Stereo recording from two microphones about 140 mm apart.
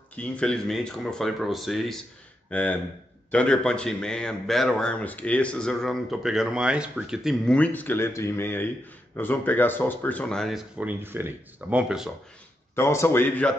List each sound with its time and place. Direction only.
0.1 s a man's voice: 10° left (ahead or behind)
2.5 s a man's voice: 10° left (ahead or behind)
7.5 s speech: 10° left (ahead or behind)
10.8 s speech: 15° right (ahead or behind)
12.7 s speech: 20° left (ahead or behind)